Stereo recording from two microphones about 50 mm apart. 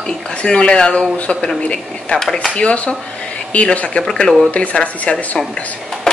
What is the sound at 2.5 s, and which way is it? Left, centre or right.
Speech, left.